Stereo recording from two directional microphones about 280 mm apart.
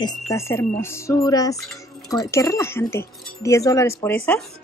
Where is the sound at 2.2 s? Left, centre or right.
Centre.